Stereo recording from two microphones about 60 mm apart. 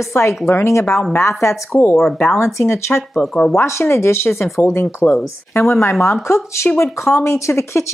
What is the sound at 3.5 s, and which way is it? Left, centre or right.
A woman's voice, left.